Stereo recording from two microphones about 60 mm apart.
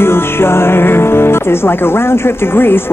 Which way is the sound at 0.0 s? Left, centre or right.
Left.